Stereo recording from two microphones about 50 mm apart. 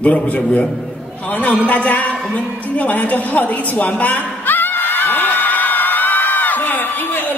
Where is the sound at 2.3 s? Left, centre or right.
Left.